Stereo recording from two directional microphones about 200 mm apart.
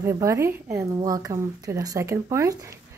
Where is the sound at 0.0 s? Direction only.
15° right (ahead or behind).